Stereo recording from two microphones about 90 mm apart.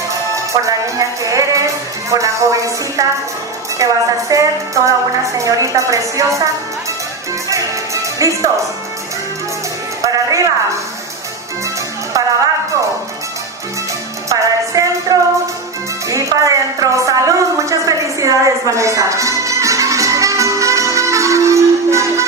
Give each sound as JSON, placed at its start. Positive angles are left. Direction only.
{"t": 0.5, "sound": "speech", "side_deg": -40}
{"t": 10.0, "sound": "music", "side_deg": -35}
{"t": 14.3, "sound": "a sound", "side_deg": -40}